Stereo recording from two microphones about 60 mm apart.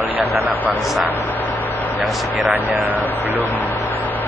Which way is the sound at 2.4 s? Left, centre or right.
Right.